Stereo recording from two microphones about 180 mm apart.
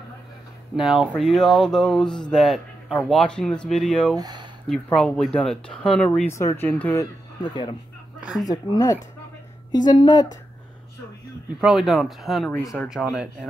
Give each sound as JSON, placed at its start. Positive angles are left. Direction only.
{"t": 0.7, "sound": "speech", "side_deg": 0}
{"t": 4.2, "sound": "a sound", "side_deg": -20}
{"t": 4.8, "sound": "speech", "side_deg": 5}
{"t": 7.4, "sound": "a woman's voice", "side_deg": 25}
{"t": 11.6, "sound": "speech", "side_deg": 0}
{"t": 12.5, "sound": "speech", "side_deg": 10}
{"t": 12.8, "sound": "speech", "side_deg": -5}